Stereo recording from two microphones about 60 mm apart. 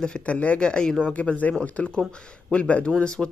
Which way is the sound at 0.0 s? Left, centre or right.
Centre.